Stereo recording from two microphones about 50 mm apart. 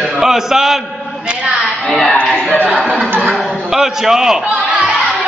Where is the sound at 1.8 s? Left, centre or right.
Centre.